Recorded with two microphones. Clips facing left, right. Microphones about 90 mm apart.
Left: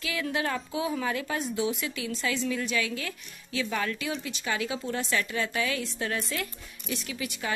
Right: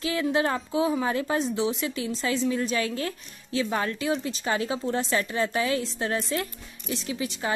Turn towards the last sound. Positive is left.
turn(degrees=-30)  # may be behind; listen again after turning